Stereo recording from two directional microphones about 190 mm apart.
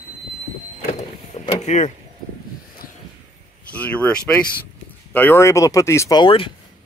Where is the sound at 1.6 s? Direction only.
40° left (ahead or behind).